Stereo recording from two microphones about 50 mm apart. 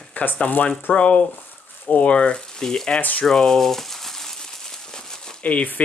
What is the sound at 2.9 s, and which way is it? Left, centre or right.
Speech, left.